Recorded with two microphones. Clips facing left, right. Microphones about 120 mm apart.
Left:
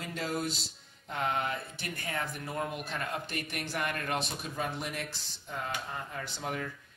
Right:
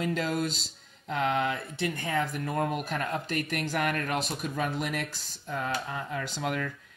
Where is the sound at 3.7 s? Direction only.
85° right.